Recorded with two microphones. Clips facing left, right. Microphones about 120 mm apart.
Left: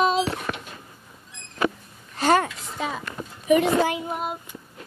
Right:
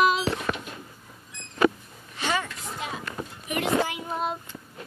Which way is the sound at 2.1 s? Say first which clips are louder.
Left 8 dB; 45° left (ahead or behind).